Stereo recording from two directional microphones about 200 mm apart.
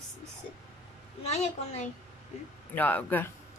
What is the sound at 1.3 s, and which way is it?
Speech, 35° left (ahead or behind).